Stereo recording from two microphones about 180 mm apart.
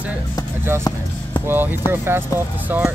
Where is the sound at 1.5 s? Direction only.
10° right (ahead or behind).